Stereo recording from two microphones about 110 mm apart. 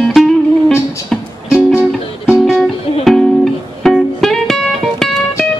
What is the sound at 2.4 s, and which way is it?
Music, centre (ahead or behind).